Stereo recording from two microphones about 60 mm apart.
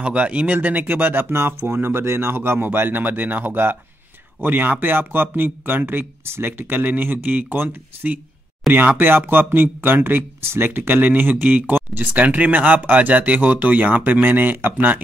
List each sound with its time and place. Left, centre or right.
0.0 s speech: right
1.3 s speech: right